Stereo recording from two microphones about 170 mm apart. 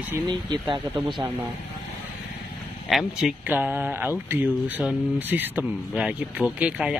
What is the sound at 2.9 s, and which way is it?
Speech, 5° right (ahead or behind).